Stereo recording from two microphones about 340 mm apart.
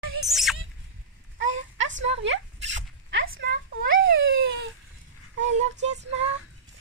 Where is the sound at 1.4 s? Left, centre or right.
Right.